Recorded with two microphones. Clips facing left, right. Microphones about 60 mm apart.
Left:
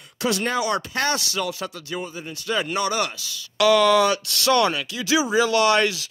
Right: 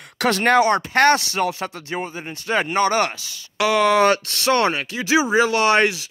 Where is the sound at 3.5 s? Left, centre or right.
Right.